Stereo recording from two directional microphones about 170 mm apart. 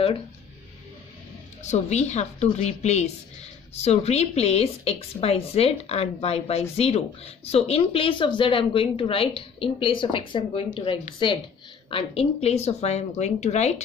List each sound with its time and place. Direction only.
1.6 s speech: 40° left (ahead or behind)